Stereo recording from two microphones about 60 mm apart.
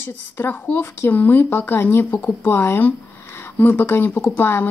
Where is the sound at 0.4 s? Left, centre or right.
Left.